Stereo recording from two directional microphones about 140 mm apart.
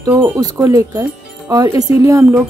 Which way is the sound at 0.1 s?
20° right (ahead or behind).